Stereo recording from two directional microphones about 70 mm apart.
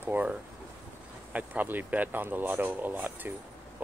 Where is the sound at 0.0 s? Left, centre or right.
Right.